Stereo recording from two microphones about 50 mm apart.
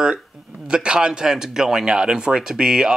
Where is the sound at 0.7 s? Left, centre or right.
Centre.